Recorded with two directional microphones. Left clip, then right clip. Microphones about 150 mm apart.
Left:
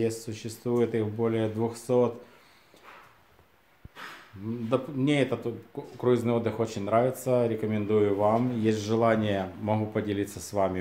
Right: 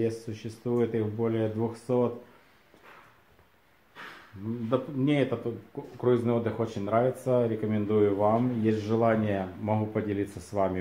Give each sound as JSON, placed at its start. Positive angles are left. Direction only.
{"t": 0.0, "sound": "speech", "side_deg": 15}
{"t": 4.6, "sound": "speech", "side_deg": 5}